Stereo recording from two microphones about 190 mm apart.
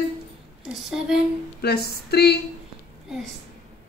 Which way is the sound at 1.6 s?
55° left (ahead or behind).